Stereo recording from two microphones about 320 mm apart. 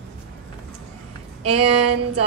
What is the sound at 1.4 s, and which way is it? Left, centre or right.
Speech, centre.